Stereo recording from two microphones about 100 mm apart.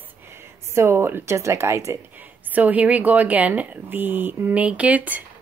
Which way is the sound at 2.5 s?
15° right (ahead or behind).